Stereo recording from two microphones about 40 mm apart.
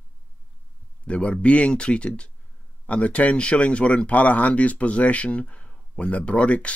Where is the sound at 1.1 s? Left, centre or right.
Left.